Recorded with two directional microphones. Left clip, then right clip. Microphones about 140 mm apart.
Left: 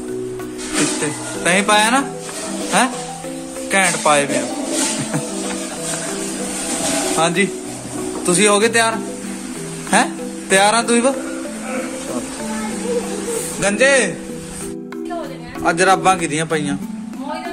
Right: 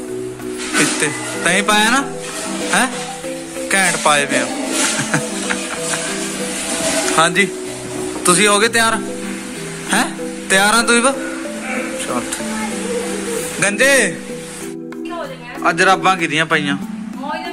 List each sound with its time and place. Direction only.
1.0 s a man's voice: centre (ahead or behind)
3.7 s a man's voice: centre (ahead or behind)
7.2 s a man's voice: centre (ahead or behind)
13.6 s a man's voice: 5° right (ahead or behind)
15.6 s a man's voice: 5° left (ahead or behind)